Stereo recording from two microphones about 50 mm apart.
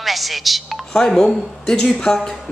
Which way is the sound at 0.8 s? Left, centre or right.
Centre.